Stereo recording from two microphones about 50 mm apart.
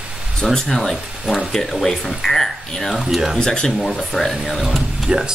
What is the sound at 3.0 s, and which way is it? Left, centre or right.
Speech, centre.